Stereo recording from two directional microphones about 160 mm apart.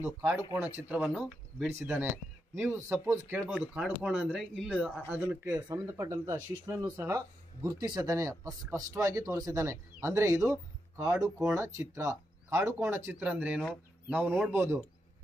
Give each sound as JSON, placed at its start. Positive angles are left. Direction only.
{"t": 0.2, "sound": "speech", "side_deg": -15}
{"t": 5.5, "sound": "speech", "side_deg": -25}
{"t": 7.6, "sound": "speech", "side_deg": -25}